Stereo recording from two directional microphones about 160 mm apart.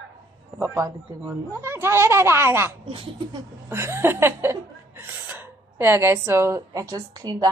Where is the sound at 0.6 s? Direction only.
20° right (ahead or behind).